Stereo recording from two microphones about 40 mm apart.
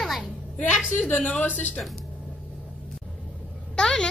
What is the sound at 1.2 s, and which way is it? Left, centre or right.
Speech, left.